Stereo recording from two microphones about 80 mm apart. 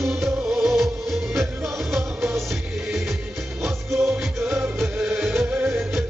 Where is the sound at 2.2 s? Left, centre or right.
Right.